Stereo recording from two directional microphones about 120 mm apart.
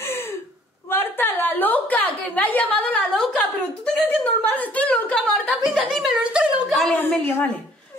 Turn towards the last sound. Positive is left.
turn(degrees=15)  # may be behind; listen again after turning